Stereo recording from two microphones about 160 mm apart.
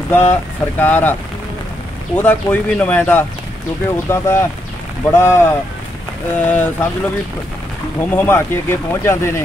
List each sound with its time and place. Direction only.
0.1 s speech: 15° left (ahead or behind)
2.1 s speech: 10° left (ahead or behind)
8.0 s speech: 15° left (ahead or behind)